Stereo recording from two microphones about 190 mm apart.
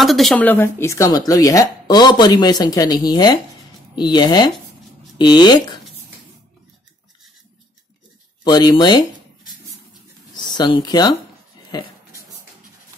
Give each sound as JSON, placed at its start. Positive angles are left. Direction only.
{"t": 0.0, "sound": "speech", "side_deg": 0}
{"t": 8.5, "sound": "speech", "side_deg": 20}
{"t": 10.3, "sound": "speech", "side_deg": 25}